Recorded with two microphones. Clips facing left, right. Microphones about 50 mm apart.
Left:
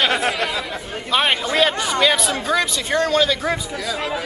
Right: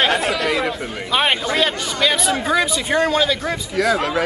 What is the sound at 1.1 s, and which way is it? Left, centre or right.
Speech, centre.